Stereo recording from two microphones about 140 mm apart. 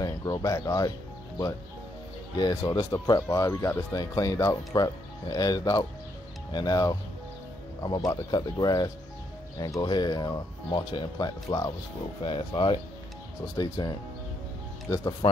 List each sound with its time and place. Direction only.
0.0 s speech: 25° left (ahead or behind)
2.3 s speech: 30° left (ahead or behind)